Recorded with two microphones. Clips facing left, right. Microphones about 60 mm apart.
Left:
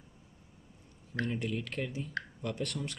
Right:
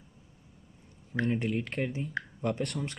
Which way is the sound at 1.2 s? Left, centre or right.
Right.